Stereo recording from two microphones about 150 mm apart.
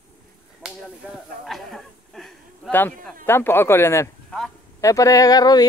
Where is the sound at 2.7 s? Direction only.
15° left (ahead or behind).